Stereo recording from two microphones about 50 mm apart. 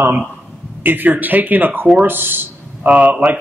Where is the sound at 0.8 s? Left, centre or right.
Right.